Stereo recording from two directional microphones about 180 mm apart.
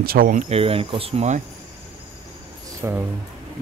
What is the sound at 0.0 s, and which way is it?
Speech, 55° right (ahead or behind).